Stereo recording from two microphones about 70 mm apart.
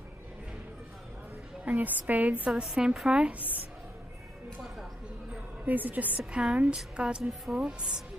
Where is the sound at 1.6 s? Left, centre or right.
Right.